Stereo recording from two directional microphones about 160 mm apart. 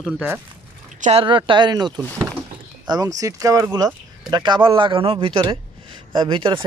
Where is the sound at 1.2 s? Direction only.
30° right (ahead or behind).